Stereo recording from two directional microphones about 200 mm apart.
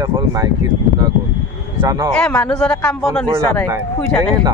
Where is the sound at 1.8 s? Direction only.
15° right (ahead or behind).